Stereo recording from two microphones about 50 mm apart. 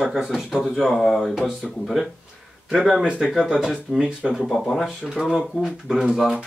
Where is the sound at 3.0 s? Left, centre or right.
Centre.